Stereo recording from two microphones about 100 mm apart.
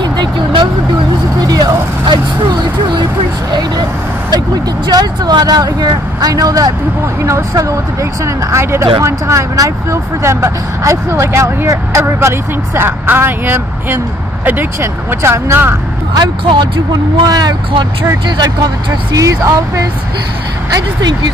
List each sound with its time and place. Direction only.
0.0 s vehicle: 50° right (ahead or behind)
1.4 s speech: 40° right (ahead or behind)
4.8 s speech: 45° right (ahead or behind); by 15.7 s 25° right (ahead or behind)
16.2 s speech: 55° right (ahead or behind)
17.3 s speech: 40° right (ahead or behind)
19.1 s speech: 35° right (ahead or behind)